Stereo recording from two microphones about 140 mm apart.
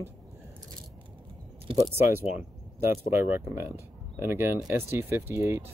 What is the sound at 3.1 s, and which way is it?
Speech, 20° right (ahead or behind).